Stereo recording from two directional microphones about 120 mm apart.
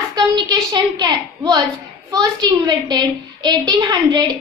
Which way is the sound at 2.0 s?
35° right (ahead or behind).